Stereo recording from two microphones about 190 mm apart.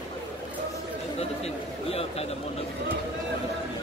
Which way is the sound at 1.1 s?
30° left (ahead or behind).